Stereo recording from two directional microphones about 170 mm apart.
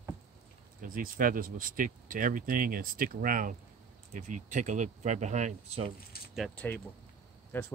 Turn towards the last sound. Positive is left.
turn(degrees=10)  # may be behind; listen again after turning